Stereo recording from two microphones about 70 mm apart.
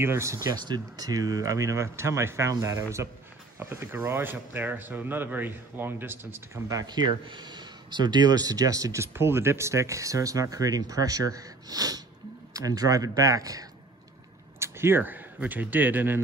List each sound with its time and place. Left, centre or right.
0.0 s speech: right
0.5 s speech: right
6.7 s speech: right
14.6 s speech: right